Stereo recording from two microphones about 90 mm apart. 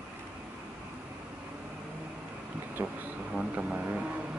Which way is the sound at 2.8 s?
25° right (ahead or behind).